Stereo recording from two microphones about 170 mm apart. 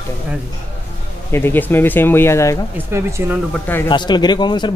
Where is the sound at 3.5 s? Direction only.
10° left (ahead or behind).